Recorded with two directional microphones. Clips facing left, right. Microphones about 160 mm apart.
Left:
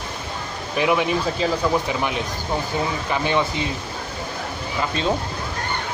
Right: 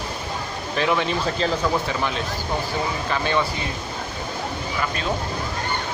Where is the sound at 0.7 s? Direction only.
15° left (ahead or behind).